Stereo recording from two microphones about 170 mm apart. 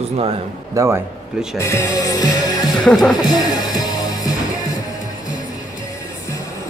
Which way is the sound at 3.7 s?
20° left (ahead or behind).